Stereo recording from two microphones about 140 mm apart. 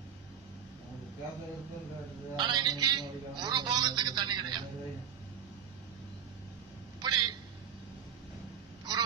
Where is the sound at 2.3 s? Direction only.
30° right (ahead or behind).